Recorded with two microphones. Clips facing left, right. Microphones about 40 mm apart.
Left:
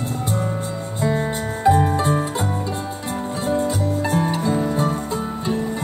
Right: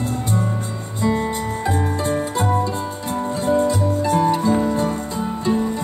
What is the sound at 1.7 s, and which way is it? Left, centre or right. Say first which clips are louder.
Music: left 6 dB; left.